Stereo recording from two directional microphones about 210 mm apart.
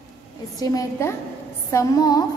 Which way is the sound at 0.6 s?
15° left (ahead or behind).